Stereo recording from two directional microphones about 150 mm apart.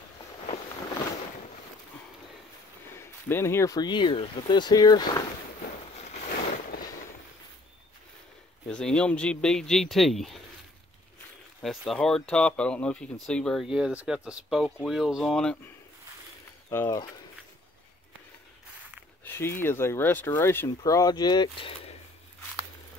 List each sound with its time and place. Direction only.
3.0 s speech: 15° left (ahead or behind)
8.6 s speech: 5° left (ahead or behind)
11.6 s speech: centre (ahead or behind)
16.7 s speech: 15° left (ahead or behind)
19.2 s speech: 15° left (ahead or behind); by 21.9 s 35° left (ahead or behind)